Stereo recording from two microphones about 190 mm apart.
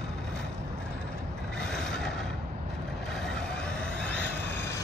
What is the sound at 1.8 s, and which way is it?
Mechanisms, centre (ahead or behind).